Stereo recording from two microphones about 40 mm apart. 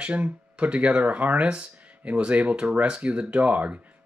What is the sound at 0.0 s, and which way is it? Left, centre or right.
Speech, right.